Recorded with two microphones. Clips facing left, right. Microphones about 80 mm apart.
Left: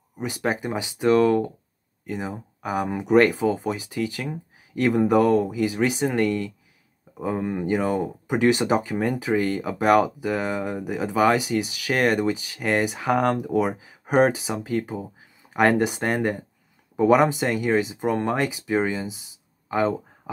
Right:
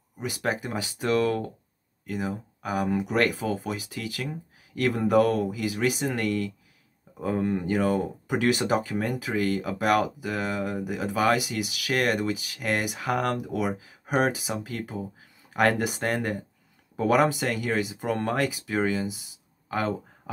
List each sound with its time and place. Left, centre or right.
0.2 s speech: left
7.2 s speech: centre